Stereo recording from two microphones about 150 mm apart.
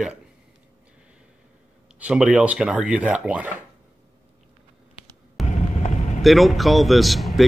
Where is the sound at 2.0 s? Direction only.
5° right (ahead or behind).